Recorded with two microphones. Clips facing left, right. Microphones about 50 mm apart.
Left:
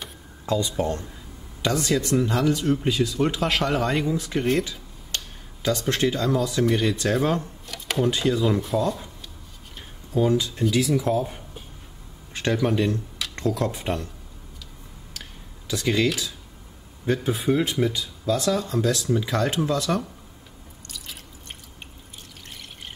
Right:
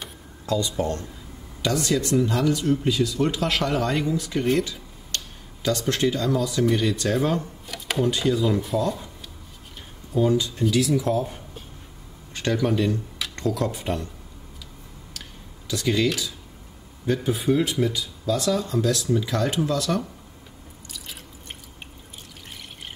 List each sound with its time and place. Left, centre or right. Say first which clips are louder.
0.5 s speech: even; centre
7.6 s drawer open or close: even; centre
8.0 s speech: even; centre
9.8 s a sound: even; centre
10.3 s speech: even; centre
15.7 s speech: even; centre
20.8 s drip: even; centre
22.5 s water: right 1 dB; centre